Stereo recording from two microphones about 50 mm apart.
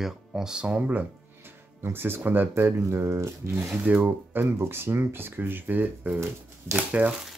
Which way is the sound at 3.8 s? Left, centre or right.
Right.